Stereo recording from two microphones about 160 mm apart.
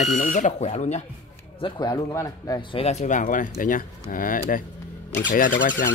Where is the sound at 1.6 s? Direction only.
25° left (ahead or behind).